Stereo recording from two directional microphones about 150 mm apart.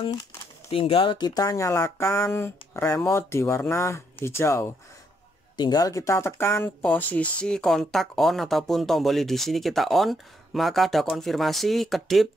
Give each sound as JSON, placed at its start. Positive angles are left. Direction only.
{"t": 0.7, "sound": "speech", "side_deg": 40}